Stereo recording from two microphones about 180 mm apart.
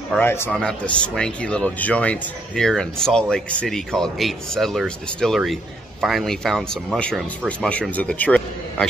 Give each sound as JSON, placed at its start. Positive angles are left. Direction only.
{"t": 0.1, "sound": "speech", "side_deg": 10}